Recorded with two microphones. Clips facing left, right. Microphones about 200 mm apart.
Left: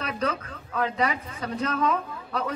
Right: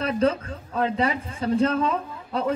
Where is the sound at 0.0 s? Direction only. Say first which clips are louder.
Right 7 dB; 30° right (ahead or behind).